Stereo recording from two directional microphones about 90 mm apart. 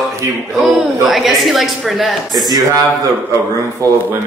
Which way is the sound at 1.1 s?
Centre (ahead or behind).